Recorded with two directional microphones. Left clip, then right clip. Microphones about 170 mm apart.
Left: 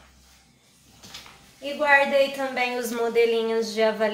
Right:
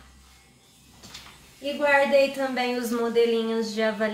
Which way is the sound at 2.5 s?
40° left (ahead or behind).